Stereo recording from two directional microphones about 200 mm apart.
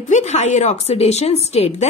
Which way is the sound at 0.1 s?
35° left (ahead or behind).